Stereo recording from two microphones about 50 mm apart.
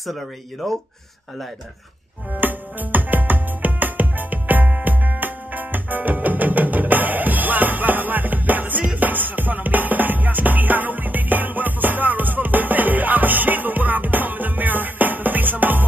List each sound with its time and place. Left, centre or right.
0.0 s speech: centre
2.4 s music: right